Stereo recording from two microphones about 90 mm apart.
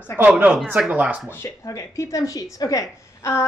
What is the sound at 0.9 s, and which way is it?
Speech, 15° right (ahead or behind).